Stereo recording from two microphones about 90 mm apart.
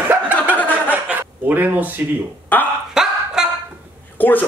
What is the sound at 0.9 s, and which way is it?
Speech, 20° right (ahead or behind).